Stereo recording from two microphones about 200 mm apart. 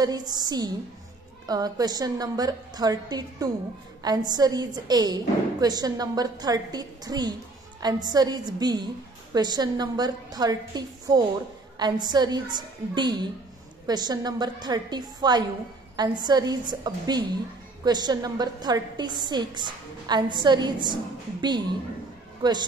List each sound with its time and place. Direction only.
0.0 s a woman's voice: 20° right (ahead or behind)